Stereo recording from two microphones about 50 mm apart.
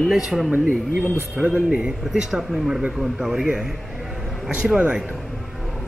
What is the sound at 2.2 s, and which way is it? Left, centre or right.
A man's voice, centre.